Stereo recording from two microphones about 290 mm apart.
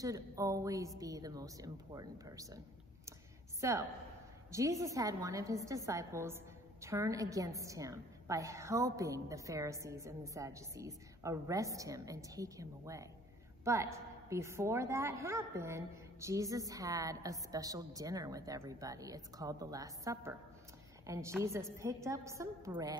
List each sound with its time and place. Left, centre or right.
0.0 s a woman's voice: centre
3.6 s a woman's voice: centre